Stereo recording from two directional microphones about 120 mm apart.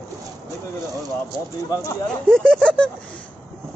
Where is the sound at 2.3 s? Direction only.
5° left (ahead or behind).